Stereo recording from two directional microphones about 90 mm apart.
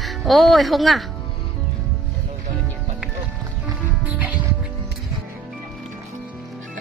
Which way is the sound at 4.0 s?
15° right (ahead or behind).